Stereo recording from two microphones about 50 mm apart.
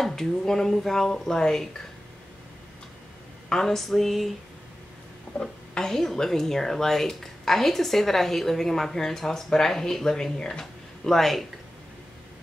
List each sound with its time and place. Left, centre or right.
0.0 s a woman's voice: centre
3.4 s a sound: centre
5.4 s a woman's voice: centre
10.6 s speech: centre